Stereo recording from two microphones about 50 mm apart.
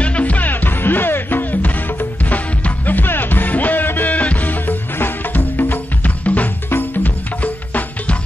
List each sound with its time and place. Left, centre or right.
0.0 s music: left